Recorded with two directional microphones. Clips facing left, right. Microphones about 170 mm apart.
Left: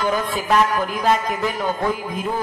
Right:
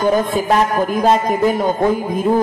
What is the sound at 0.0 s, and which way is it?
Music, 45° right (ahead or behind).